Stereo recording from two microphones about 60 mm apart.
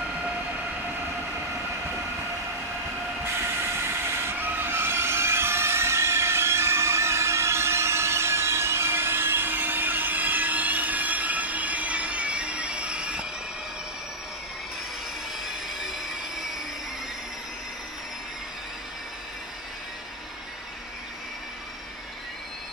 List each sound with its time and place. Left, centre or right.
3.3 s train: right
4.4 s train: right; by 13.3 s centre
15.4 s a sound: centre